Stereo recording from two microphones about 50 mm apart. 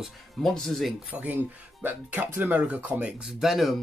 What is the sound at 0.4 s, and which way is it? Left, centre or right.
Speech, centre.